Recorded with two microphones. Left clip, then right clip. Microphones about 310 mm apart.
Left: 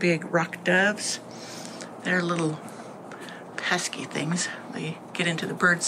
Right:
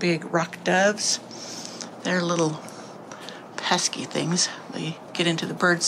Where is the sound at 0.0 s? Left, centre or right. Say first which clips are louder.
Even; centre.